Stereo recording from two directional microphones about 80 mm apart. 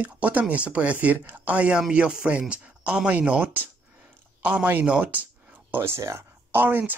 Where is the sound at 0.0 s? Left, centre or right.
Centre.